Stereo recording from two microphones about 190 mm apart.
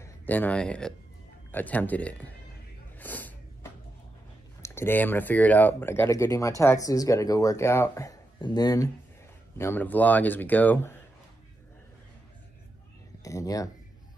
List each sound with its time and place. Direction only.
0.0 s speech: 10° left (ahead or behind)
3.0 s snort: 10° left (ahead or behind)
4.6 s speech: 15° left (ahead or behind)
13.2 s a sound: 15° left (ahead or behind)